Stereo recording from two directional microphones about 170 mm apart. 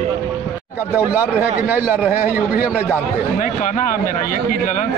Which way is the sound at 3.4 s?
50° left (ahead or behind).